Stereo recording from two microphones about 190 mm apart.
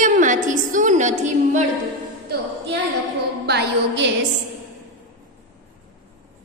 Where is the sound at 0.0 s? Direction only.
40° right (ahead or behind).